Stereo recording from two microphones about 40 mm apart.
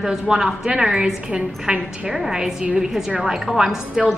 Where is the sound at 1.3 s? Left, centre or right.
Right.